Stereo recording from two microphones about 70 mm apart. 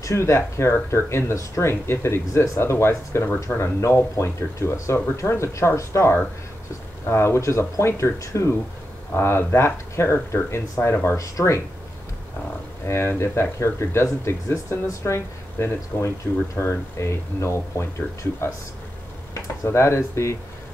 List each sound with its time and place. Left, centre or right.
0.0 s speech: left
9.1 s speech: left
12.8 s speech: left
19.4 s speech: left